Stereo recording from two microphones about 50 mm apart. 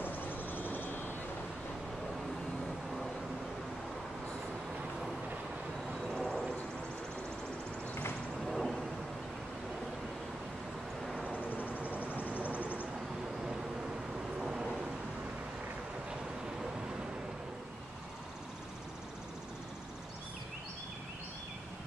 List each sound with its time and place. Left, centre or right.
0.0 s vehicle: left
6.1 s a sound: centre
8.5 s vehicle: centre
11.2 s vehicle: right
12.3 s a sound: right
14.4 s vehicle: centre